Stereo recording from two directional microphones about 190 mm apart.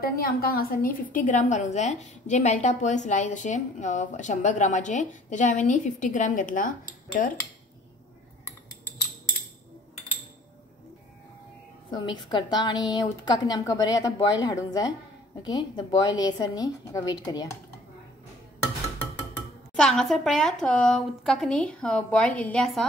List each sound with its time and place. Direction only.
0.0 s a woman's voice: 50° left (ahead or behind)
11.9 s a woman's voice: 25° left (ahead or behind)
19.7 s a woman's voice: 5° left (ahead or behind)